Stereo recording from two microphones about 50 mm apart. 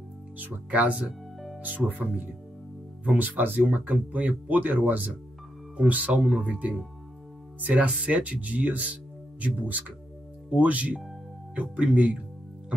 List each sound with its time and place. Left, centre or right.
0.4 s speech: right